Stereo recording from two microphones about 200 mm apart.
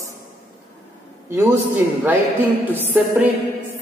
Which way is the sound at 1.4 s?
10° right (ahead or behind).